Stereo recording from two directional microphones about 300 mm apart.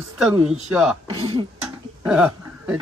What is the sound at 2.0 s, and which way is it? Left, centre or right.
Cough, centre.